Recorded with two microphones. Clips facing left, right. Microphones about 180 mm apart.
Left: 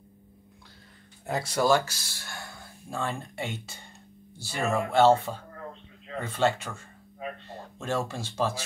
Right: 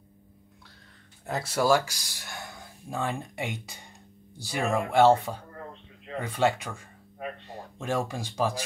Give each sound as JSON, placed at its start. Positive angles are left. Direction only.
{"t": 1.2, "sound": "speech", "side_deg": 0}
{"t": 7.8, "sound": "speech", "side_deg": -15}